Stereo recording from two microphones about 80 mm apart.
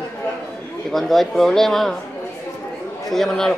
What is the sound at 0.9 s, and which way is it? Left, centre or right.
A man's voice, centre.